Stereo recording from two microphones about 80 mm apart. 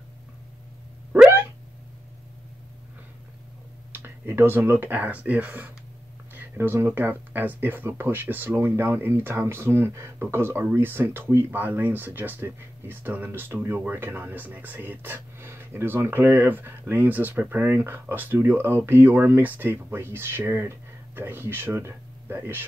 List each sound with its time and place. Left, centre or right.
3.9 s speech: right